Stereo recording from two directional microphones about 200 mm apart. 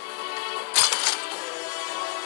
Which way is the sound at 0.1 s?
50° left (ahead or behind).